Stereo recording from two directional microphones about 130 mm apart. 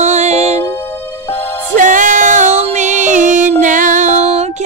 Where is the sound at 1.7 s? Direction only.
80° right.